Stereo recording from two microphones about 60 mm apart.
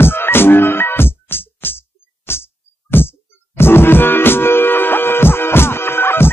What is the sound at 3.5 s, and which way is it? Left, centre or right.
Music, left.